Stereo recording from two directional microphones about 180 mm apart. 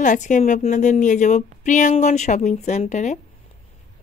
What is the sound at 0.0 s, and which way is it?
A woman's voice, 45° left (ahead or behind).